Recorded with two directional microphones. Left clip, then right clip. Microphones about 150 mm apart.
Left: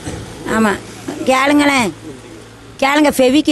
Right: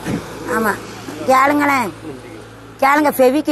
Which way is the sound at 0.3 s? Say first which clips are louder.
Left 3 dB; 40° left (ahead or behind).